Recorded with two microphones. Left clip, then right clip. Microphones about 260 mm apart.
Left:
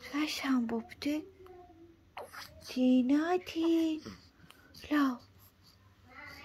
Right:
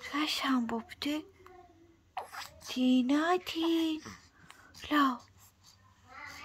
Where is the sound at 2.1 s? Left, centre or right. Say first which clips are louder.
Right 4 dB; centre.